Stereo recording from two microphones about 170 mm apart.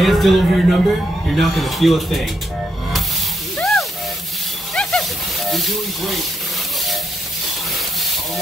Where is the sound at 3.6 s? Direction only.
Centre (ahead or behind).